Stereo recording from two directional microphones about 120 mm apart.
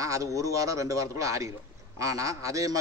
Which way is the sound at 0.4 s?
25° right (ahead or behind).